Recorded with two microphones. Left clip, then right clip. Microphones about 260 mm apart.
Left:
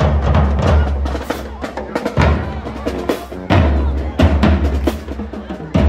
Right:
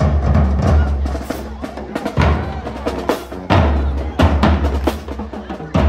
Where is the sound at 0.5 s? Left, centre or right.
Left.